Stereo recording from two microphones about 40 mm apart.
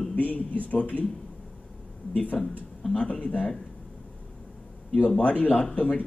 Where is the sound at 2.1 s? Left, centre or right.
Left.